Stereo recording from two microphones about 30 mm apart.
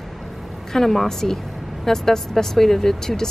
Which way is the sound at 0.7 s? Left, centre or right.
Centre.